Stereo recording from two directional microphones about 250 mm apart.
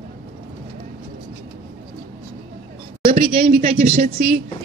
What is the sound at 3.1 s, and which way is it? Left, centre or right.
Speech, right.